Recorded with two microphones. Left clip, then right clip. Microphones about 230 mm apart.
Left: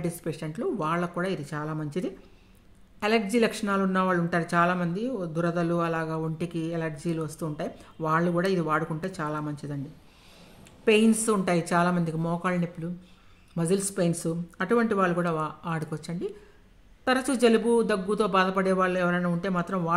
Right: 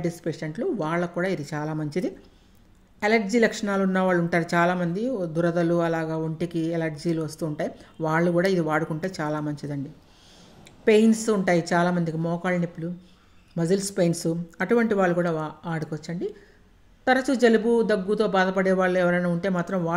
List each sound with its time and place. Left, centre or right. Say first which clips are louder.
0.0 s speech: right 4 dB; centre
10.9 s speech: right 3 dB; centre